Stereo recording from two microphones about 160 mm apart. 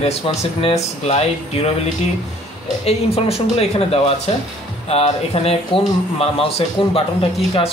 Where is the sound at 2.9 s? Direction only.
40° left (ahead or behind).